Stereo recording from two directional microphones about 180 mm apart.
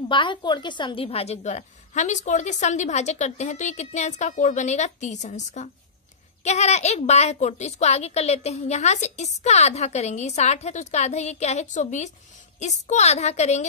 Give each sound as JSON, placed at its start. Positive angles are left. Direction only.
{"t": 0.1, "sound": "a woman's voice", "side_deg": 25}